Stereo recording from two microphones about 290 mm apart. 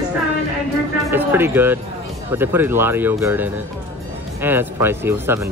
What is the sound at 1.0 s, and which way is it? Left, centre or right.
Speech, centre.